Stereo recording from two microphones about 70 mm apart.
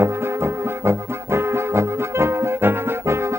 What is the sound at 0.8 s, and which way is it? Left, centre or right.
Brass instrument, right.